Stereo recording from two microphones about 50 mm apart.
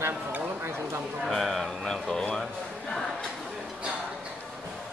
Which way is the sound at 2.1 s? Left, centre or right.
Centre.